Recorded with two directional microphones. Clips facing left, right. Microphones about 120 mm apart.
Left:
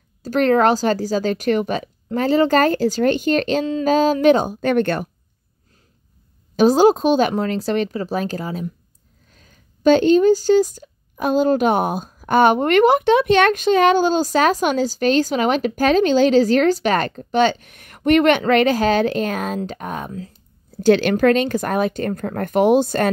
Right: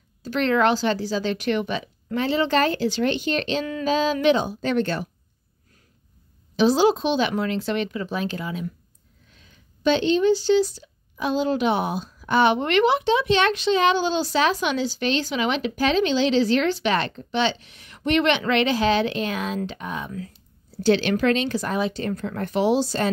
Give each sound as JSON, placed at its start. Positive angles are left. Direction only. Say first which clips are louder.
{"t": 0.2, "sound": "speech", "louder": "left 5 dB", "side_deg": 40}
{"t": 6.5, "sound": "speech", "louder": "left 5 dB", "side_deg": 45}
{"t": 20.1, "sound": "speech", "louder": "left 2 dB", "side_deg": 30}
{"t": 20.7, "sound": "speech", "louder": "left 5 dB", "side_deg": 50}